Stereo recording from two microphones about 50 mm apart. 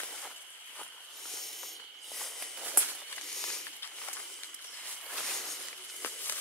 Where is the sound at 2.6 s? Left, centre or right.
Right.